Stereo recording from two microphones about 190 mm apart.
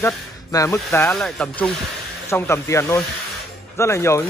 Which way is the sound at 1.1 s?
5° left (ahead or behind).